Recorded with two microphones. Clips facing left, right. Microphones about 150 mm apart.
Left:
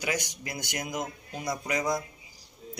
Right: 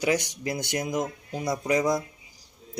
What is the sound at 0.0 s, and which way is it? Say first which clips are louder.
A man's voice: right 7 dB; 30° right (ahead or behind).